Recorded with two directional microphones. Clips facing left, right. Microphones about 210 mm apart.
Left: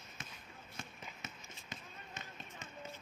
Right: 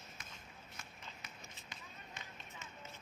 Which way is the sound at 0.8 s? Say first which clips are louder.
Left 7 dB; 25° left (ahead or behind).